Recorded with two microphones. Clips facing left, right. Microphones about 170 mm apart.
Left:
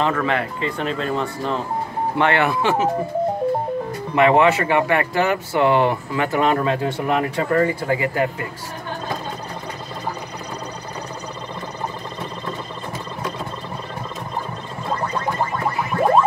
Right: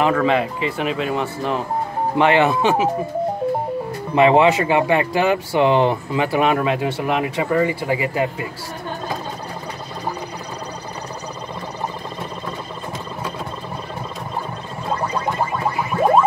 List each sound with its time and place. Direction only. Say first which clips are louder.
0.0 s speech: right 4 dB; 15° right (ahead or behind)
4.1 s speech: right 1 dB; 20° right (ahead or behind)
6.2 s speech: right 1 dB; 10° right (ahead or behind)